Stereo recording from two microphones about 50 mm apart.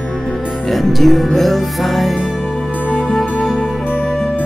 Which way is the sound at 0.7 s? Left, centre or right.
Centre.